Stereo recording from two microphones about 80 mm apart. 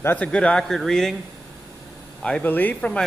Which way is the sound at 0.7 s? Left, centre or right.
Centre.